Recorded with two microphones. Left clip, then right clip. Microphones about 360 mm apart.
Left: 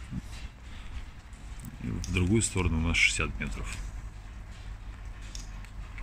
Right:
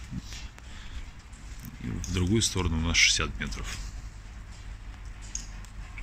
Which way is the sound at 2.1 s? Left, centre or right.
Centre.